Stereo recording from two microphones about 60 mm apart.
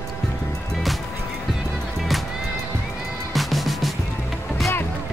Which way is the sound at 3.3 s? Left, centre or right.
Centre.